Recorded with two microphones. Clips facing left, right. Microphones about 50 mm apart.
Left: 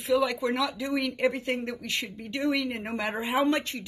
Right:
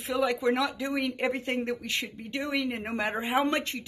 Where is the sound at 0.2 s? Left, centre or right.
Right.